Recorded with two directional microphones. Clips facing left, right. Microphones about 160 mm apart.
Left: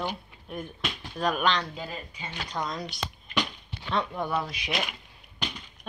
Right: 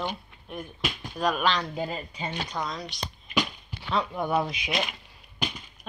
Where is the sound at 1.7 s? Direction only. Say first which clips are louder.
Right 6 dB; 25° right (ahead or behind).